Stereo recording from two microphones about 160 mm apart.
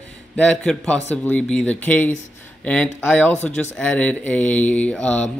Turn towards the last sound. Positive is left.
turn(degrees=5)  # may be behind; listen again after turning